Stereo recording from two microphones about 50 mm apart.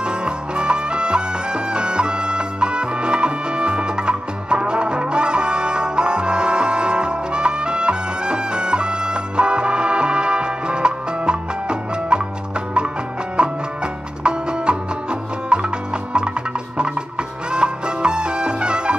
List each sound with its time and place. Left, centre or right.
0.0 s music: centre
13.4 s music: right
16.7 s music: centre